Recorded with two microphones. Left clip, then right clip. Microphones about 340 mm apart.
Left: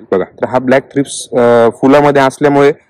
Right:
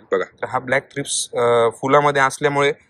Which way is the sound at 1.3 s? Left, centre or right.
Left.